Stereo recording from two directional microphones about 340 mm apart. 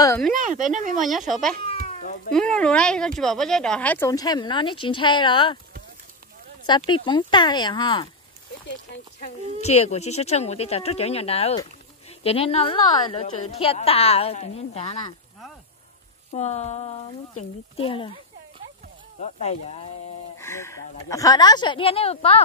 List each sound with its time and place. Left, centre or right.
0.0 s speech: centre
0.3 s speech: right
1.0 s speech: centre
1.9 s cat: centre
2.3 s speech: centre
6.9 s a woman's voice: centre
9.2 s a woman's voice: centre
16.3 s a woman's voice: centre
19.4 s a woman's voice: centre
20.3 s speech: centre